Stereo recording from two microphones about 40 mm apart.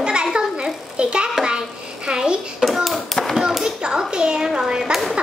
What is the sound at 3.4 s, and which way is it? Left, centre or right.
Speech, centre.